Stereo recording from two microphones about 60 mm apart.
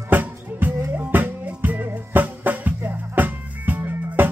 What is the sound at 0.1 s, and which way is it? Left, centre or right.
Music, right.